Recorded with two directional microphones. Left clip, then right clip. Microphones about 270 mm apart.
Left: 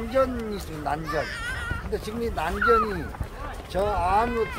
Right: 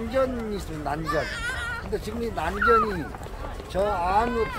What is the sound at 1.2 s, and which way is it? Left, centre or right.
Speech, right.